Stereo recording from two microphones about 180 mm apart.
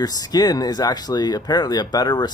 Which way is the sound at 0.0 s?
20° left (ahead or behind).